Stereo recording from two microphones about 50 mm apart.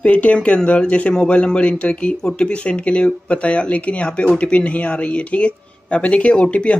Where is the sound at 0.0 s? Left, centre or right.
Left.